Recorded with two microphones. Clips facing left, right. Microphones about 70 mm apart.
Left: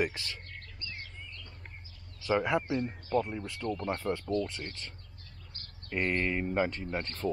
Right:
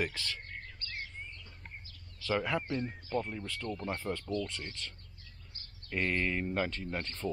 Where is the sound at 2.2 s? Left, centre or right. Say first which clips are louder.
Left 4 dB; centre.